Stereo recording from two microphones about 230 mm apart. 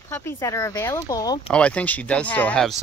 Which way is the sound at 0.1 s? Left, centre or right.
Centre.